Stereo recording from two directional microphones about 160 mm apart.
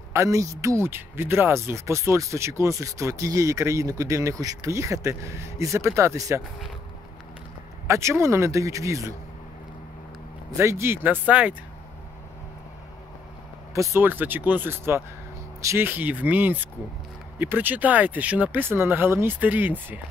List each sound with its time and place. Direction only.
0.1 s speech: 20° right (ahead or behind)
7.8 s speech: 20° right (ahead or behind)
10.6 s speech: 15° right (ahead or behind)
13.7 s speech: 15° right (ahead or behind)